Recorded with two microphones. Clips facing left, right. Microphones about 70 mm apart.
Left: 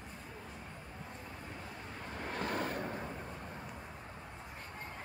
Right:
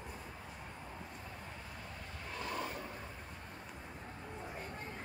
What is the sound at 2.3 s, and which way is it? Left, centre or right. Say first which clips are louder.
Vehicle: left 4 dB; left.